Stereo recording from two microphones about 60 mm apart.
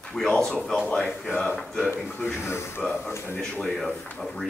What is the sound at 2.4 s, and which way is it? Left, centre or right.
Speech, left.